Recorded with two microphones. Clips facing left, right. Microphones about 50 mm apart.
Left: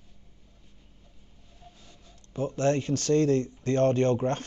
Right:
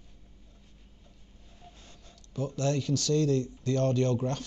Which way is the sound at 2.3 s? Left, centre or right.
Left.